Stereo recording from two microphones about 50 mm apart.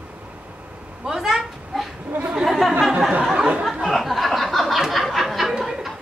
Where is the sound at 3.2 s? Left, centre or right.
Centre.